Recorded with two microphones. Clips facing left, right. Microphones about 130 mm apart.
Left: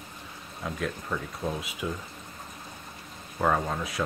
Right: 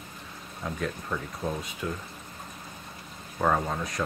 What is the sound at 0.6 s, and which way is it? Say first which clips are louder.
Speech: even; centre (ahead or behind).